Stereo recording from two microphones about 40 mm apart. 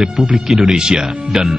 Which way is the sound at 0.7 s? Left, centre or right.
Right.